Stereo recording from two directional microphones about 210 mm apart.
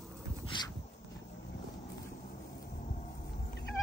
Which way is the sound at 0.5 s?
20° left (ahead or behind).